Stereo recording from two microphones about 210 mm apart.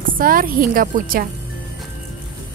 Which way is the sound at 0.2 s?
40° right (ahead or behind).